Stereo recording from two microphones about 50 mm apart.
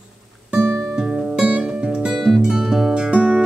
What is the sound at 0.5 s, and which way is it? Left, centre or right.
Music, right.